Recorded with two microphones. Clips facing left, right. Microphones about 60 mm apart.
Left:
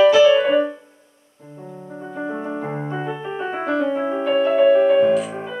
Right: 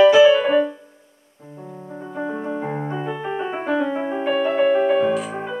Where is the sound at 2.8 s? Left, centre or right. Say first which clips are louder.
Even; centre.